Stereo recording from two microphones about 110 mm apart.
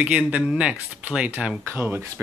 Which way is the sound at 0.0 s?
10° right (ahead or behind).